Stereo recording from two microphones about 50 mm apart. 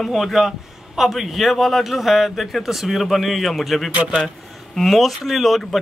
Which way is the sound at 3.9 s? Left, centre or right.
Right.